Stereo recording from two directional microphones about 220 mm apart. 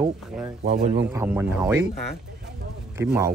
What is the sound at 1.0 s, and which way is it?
Speech, 10° right (ahead or behind).